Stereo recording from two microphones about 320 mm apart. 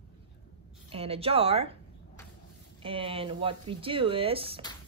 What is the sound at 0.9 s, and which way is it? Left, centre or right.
Speech, centre.